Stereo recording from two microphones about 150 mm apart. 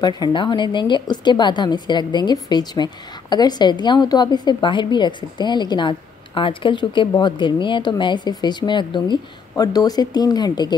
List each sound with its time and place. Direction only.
0.0 s a woman's voice: 30° left (ahead or behind)